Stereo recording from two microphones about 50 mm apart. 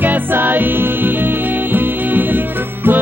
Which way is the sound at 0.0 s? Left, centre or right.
Right.